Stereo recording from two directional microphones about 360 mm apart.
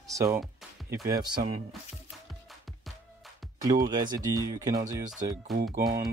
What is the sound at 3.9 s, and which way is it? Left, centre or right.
Speech, centre.